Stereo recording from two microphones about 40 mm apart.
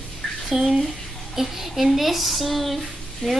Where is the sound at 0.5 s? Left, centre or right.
Centre.